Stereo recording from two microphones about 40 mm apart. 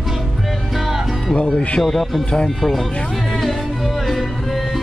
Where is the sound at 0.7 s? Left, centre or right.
Centre.